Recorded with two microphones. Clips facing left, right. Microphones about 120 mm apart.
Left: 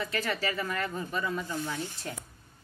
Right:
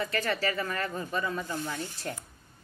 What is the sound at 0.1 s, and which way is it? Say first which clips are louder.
Speech: right 2 dB; 5° left (ahead or behind).